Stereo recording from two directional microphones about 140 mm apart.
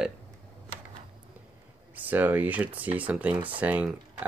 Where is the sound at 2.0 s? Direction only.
15° right (ahead or behind).